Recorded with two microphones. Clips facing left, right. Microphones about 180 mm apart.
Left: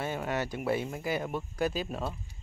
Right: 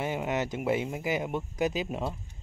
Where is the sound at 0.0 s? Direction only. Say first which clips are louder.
Right 2 dB; 15° right (ahead or behind).